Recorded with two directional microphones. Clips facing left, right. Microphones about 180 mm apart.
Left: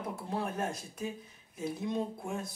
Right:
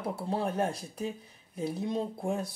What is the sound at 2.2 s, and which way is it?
Speech, 35° right (ahead or behind).